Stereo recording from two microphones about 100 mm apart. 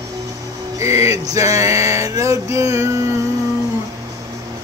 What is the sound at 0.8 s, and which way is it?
Male singing, 30° right (ahead or behind).